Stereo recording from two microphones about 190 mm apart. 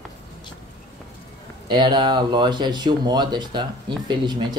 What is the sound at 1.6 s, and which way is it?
Speech, 25° right (ahead or behind).